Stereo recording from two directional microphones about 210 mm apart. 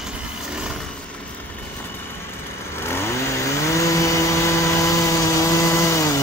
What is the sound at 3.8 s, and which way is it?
Chainsaw, 15° left (ahead or behind).